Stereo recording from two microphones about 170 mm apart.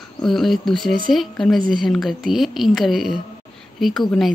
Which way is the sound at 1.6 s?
55° right (ahead or behind).